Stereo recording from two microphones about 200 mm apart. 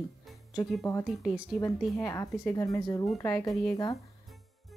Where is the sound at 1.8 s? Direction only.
Centre (ahead or behind).